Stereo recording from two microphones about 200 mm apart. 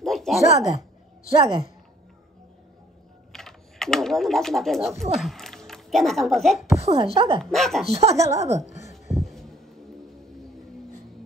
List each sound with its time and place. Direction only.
0.0 s a sound: centre (ahead or behind)
1.3 s speech: 30° right (ahead or behind)
3.3 s speech: centre (ahead or behind)
6.8 s speech: 30° right (ahead or behind)
7.4 s speech: centre (ahead or behind)
7.9 s speech: 30° right (ahead or behind)
9.1 s heart sounds: centre (ahead or behind)